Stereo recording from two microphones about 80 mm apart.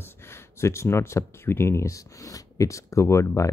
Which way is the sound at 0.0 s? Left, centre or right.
Left.